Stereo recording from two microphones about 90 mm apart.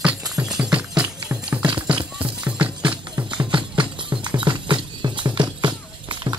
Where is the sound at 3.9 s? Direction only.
65° right (ahead or behind).